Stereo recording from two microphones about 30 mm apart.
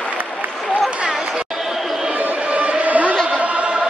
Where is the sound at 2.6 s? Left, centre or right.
Right.